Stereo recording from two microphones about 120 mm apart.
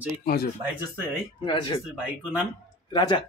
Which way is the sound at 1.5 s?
40° left (ahead or behind).